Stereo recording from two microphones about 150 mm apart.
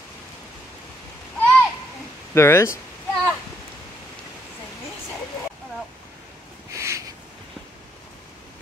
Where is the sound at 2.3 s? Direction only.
20° left (ahead or behind).